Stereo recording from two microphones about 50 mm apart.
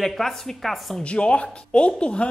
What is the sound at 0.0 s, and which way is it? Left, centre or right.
Speech, centre.